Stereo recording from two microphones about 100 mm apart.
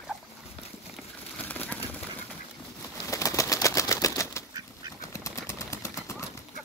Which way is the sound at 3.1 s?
30° left (ahead or behind).